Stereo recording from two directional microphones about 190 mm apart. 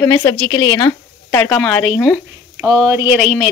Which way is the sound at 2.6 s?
10° right (ahead or behind).